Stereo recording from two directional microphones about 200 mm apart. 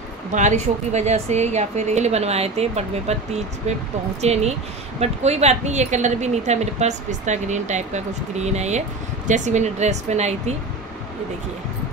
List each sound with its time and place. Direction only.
0.3 s speech: 35° right (ahead or behind)